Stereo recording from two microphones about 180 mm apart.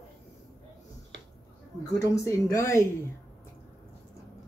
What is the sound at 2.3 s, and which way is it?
Speech, 15° left (ahead or behind).